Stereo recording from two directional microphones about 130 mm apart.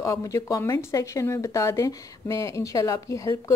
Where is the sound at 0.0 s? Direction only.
25° left (ahead or behind).